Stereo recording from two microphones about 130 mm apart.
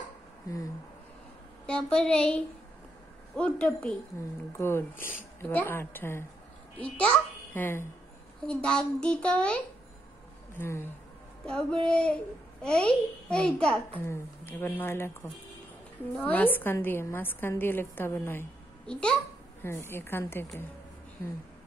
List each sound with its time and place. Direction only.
1.7 s a woman's voice: 5° left (ahead or behind)
4.5 s a woman's voice: 20° left (ahead or behind)
11.4 s a woman's voice: 5° left (ahead or behind)
14.0 s a woman's voice: 15° left (ahead or behind)
16.2 s a woman's voice: 15° left (ahead or behind)
18.9 s a woman's voice: 5° left (ahead or behind)
19.6 s a woman's voice: 20° left (ahead or behind)